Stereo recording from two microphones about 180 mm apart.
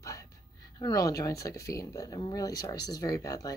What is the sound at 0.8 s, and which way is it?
Speech, 20° left (ahead or behind).